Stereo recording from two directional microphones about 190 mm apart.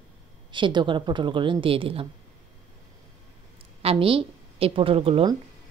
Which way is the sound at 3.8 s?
30° right (ahead or behind).